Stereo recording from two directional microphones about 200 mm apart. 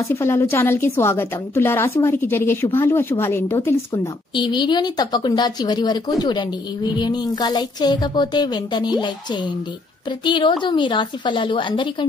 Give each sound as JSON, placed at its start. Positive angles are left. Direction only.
{"t": 0.0, "sound": "a woman's voice", "side_deg": 15}